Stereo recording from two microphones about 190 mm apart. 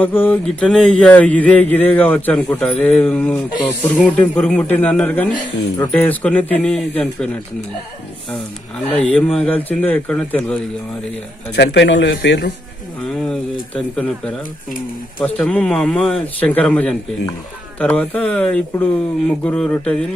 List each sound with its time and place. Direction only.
0.0 s speech: 10° left (ahead or behind)
8.9 s speech: 5° left (ahead or behind)
11.5 s a man's voice: 65° left (ahead or behind)
13.0 s speech: centre (ahead or behind)